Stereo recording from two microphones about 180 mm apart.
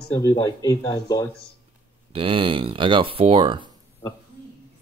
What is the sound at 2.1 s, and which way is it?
Speech, 30° right (ahead or behind).